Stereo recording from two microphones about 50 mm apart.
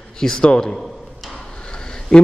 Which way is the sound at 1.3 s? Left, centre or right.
Centre.